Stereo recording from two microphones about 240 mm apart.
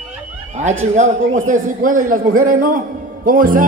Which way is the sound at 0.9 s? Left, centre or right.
Right.